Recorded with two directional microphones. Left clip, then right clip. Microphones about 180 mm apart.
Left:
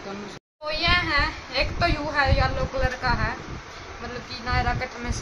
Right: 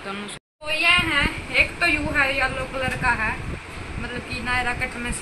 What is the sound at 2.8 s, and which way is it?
Speech, 30° left (ahead or behind).